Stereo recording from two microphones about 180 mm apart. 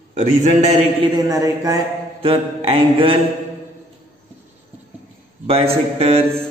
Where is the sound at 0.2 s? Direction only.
40° right (ahead or behind).